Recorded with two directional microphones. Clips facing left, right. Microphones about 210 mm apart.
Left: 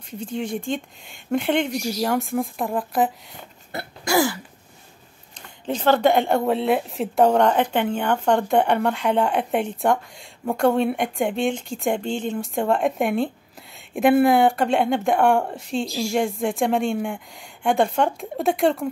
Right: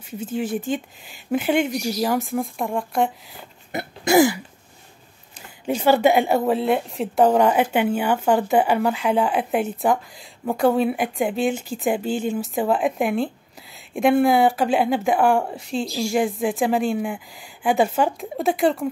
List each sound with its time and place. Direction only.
0.2 s speech: 5° right (ahead or behind)
3.7 s throat clearing: 20° right (ahead or behind)
5.7 s speech: 10° right (ahead or behind)